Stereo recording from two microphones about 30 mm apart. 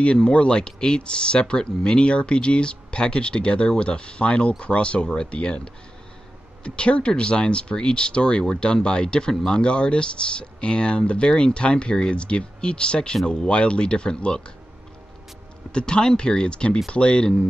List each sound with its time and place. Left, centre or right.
0.0 s speech: left
0.6 s speech: left
5.1 s speech: left
6.6 s speech: left
15.7 s speech: left